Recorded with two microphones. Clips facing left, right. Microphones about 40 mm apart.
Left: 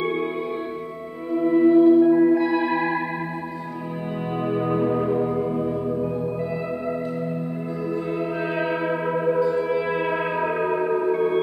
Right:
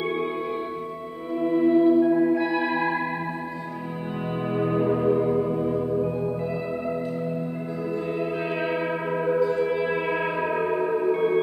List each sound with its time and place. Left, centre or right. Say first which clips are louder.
0.0 s music: left 2 dB; centre
1.3 s music: left 4 dB; centre
4.5 s music: left 1 dB; centre
7.9 s music: left 1 dB; centre